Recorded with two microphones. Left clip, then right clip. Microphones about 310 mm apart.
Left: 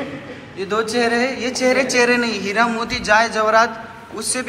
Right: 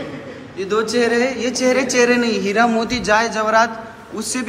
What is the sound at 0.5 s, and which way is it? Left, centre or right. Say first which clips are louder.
A man's voice: right 1 dB; centre.